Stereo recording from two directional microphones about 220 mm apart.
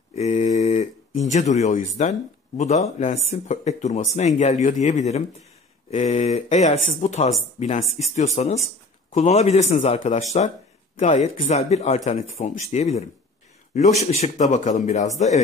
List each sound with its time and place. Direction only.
0.1 s speech: 30° left (ahead or behind)
14.1 s speech: 30° left (ahead or behind)